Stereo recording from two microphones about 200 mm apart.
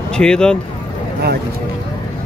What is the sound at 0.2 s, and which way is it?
Speech, 5° left (ahead or behind).